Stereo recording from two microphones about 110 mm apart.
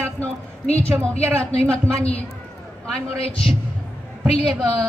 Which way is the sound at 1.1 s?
65° left (ahead or behind).